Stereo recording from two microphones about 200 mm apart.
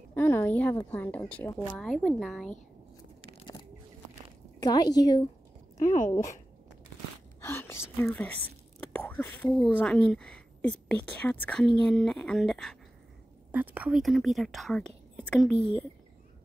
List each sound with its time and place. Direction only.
0.1 s a woman's voice: 10° left (ahead or behind)
4.6 s a woman's voice: 20° left (ahead or behind)
5.8 s speech: 40° left (ahead or behind)
7.4 s whispering: 15° left (ahead or behind)
7.9 s a woman's voice: 10° left (ahead or behind)